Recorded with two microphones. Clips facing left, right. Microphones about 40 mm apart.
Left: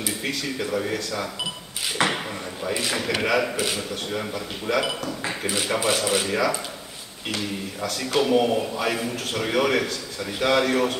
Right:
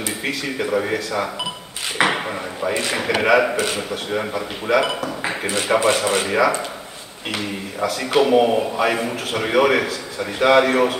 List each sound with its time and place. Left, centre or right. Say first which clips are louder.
0.2 s a man's voice: right 4 dB; centre
8.2 s a man's voice: right 5 dB; centre